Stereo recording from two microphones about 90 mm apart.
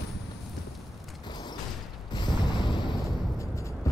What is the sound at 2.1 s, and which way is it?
Music, 55° left (ahead or behind).